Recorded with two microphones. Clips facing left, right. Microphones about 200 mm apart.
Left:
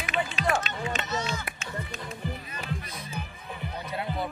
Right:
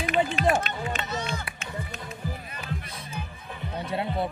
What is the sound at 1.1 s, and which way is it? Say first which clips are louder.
Speech: even; 55° right (ahead or behind).